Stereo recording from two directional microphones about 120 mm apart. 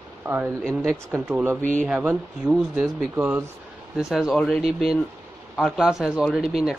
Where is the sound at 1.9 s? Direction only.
10° right (ahead or behind).